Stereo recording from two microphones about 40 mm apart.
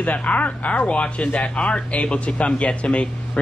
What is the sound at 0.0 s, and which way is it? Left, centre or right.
Speech, left.